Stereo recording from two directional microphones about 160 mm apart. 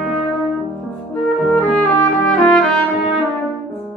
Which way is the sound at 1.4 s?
5° left (ahead or behind).